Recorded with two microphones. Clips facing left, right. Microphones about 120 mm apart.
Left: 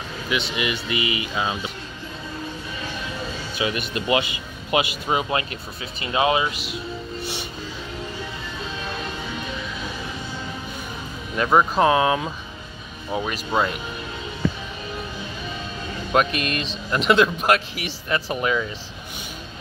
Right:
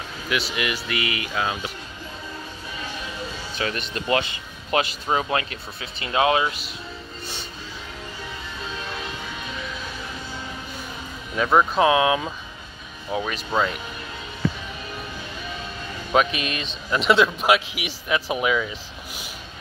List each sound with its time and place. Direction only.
0.3 s speech: centre (ahead or behind)
0.9 s speech: 55° right (ahead or behind)
1.3 s speech: 5° left (ahead or behind)
3.5 s speech: 10° left (ahead or behind)
5.4 s speech: 55° right (ahead or behind)
5.9 s speech: 5° left (ahead or behind)
11.3 s speech: 5° left (ahead or behind)
16.1 s speech: centre (ahead or behind)